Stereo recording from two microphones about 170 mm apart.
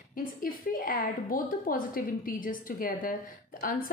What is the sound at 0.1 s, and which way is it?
A woman's voice, 55° left (ahead or behind).